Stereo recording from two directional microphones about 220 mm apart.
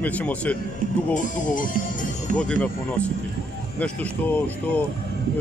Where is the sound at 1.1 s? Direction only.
35° left (ahead or behind).